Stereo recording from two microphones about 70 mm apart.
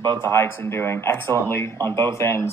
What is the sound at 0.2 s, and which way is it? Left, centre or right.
Speech, left.